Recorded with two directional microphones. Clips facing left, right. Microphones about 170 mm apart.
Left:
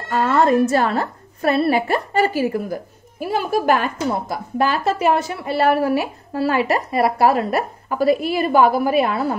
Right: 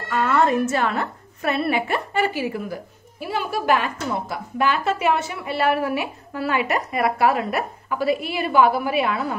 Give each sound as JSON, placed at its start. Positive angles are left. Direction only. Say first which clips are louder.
{"t": 0.1, "sound": "a woman's voice", "louder": "left 3 dB", "side_deg": 35}